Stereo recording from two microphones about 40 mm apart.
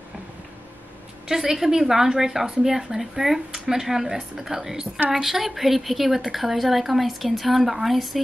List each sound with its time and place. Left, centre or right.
1.3 s a woman's voice: centre